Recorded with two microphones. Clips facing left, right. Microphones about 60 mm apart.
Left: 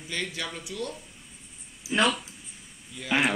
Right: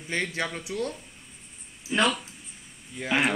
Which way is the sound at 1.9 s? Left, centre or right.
Centre.